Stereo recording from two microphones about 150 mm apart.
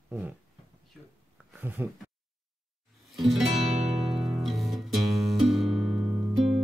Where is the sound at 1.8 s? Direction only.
15° right (ahead or behind).